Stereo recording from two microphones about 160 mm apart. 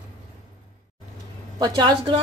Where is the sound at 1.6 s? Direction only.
30° right (ahead or behind).